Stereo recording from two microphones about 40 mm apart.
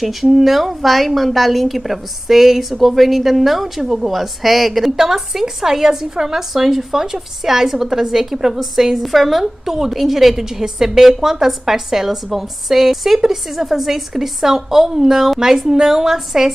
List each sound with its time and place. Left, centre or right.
0.0 s a woman's voice: centre